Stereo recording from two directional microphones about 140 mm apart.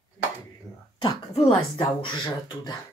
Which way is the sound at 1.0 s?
45° left (ahead or behind).